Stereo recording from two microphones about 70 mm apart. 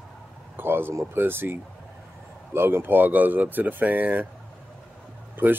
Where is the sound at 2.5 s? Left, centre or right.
Right.